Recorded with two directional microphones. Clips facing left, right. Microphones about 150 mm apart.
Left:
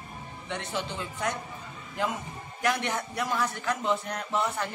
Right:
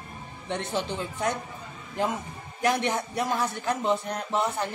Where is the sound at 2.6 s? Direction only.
30° right (ahead or behind).